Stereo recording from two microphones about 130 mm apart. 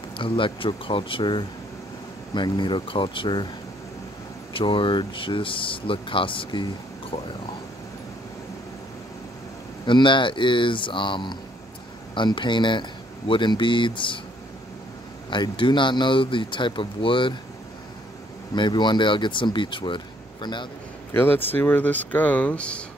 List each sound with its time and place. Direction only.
0.2 s speech: 40° left (ahead or behind)
4.6 s speech: 40° left (ahead or behind)
9.8 s speech: 40° left (ahead or behind)
15.2 s speech: 40° left (ahead or behind)
18.5 s speech: 35° left (ahead or behind)
21.1 s speech: 15° left (ahead or behind)